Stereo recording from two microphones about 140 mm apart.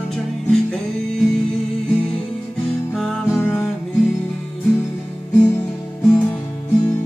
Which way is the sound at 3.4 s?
15° left (ahead or behind).